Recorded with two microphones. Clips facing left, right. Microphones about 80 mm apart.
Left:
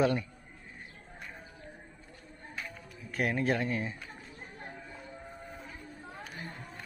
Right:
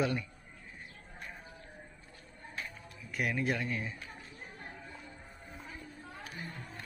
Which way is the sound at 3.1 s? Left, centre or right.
Left.